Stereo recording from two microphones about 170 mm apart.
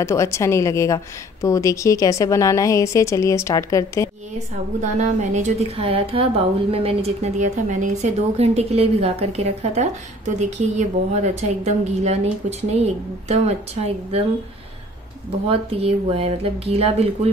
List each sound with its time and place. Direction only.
0.0 s a woman's voice: 15° left (ahead or behind)
4.9 s a woman's voice: 45° right (ahead or behind)
15.4 s a woman's voice: 35° right (ahead or behind)